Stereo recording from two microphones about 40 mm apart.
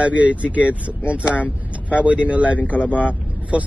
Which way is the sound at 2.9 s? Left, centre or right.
Left.